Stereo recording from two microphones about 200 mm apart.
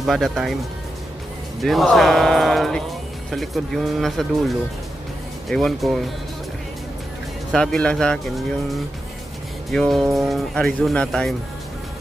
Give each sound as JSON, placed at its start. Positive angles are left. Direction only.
{"t": 0.0, "sound": "speech", "side_deg": 0}
{"t": 1.6, "sound": "speech", "side_deg": 0}
{"t": 7.5, "sound": "speech", "side_deg": 5}